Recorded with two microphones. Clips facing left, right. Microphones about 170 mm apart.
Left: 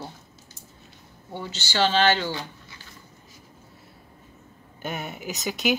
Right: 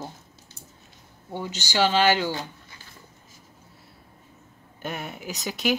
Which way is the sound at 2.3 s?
45° right (ahead or behind).